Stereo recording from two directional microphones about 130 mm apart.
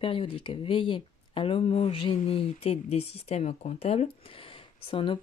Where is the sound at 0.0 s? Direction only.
45° left (ahead or behind).